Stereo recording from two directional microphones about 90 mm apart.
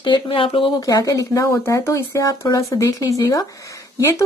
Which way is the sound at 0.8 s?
40° left (ahead or behind).